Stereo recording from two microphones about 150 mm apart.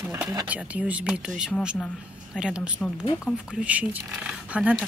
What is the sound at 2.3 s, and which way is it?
Speech, 5° right (ahead or behind).